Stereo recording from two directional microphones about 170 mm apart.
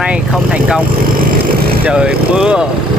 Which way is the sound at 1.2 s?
60° right (ahead or behind).